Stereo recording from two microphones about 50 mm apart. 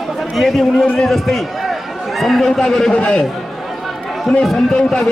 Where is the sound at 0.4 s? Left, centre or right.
Centre.